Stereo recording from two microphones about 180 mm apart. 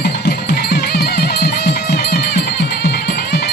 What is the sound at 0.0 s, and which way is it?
Music, 65° left (ahead or behind).